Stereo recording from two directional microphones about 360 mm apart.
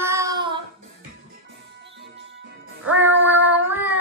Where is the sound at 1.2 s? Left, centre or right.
Right.